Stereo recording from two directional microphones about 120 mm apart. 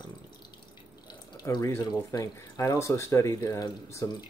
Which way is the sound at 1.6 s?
30° left (ahead or behind).